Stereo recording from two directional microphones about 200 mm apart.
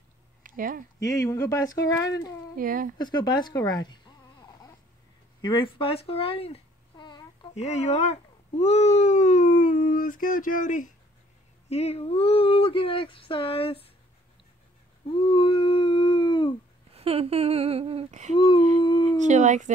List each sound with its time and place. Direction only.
0.4 s a sound: 45° right (ahead or behind)
1.0 s speech: 15° left (ahead or behind)
2.5 s speech: 45° right (ahead or behind)
3.0 s a sound: 20° left (ahead or behind)
5.4 s speech: 25° left (ahead or behind)
7.5 s speech: 35° left (ahead or behind)
15.0 s dog: 25° left (ahead or behind)
16.9 s humming: 30° right (ahead or behind)
18.3 s speech: 25° left (ahead or behind)
19.1 s speech: 35° right (ahead or behind)